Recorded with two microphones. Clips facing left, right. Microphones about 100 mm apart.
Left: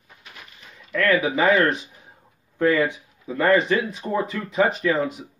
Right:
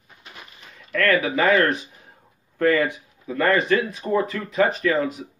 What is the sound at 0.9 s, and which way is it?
Speech, 10° left (ahead or behind).